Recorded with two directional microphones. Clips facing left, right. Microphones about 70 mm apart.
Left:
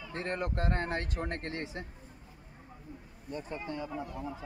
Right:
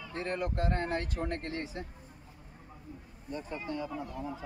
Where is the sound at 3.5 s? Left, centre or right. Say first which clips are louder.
Right 2 dB; left.